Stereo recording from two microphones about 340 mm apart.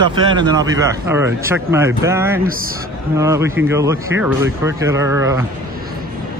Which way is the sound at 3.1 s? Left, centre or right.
Centre.